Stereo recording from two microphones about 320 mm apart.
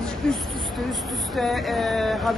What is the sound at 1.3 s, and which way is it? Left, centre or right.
Speech, centre.